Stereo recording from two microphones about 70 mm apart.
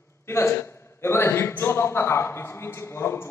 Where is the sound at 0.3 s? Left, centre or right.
Left.